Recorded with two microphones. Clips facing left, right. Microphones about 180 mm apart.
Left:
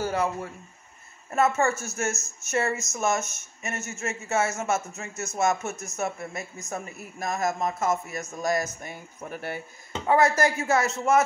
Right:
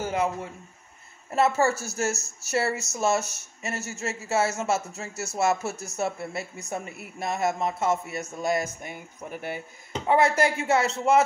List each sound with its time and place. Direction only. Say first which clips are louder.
0.0 s a man's voice: even; 20° right (ahead or behind)
1.3 s a man's voice: right 1 dB; 35° right (ahead or behind); by 9.6 s 15° right (ahead or behind)
10.0 s a man's voice: even; 25° right (ahead or behind)